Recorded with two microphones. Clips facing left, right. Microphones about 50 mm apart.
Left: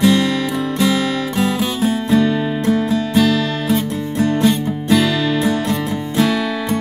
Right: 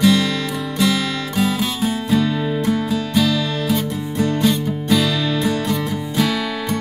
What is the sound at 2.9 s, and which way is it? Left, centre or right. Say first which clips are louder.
Music: left 3 dB; left.